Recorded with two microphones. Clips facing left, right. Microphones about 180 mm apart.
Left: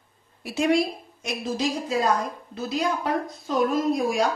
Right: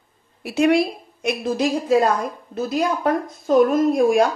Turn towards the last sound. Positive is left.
turn(degrees=-55)  # may be behind; listen again after turning